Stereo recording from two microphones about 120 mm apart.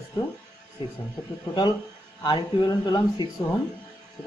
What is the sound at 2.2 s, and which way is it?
Speech, 40° left (ahead or behind).